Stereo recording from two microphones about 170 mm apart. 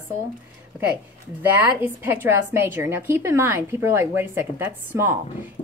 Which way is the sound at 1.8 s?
15° right (ahead or behind).